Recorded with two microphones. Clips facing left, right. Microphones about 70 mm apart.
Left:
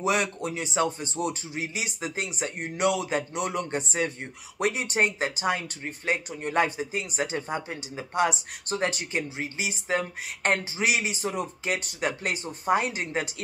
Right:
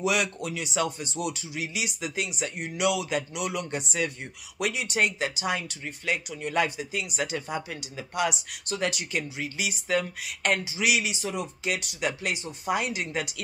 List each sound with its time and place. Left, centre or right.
0.0 s speech: left